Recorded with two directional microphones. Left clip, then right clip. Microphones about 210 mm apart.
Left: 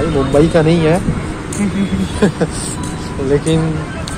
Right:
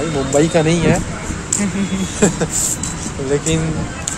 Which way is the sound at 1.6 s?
25° right (ahead or behind).